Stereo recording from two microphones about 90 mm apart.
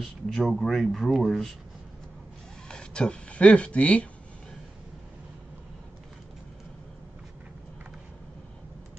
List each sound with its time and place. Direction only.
0.0 s speech: 5° left (ahead or behind)
2.7 s speech: 10° left (ahead or behind)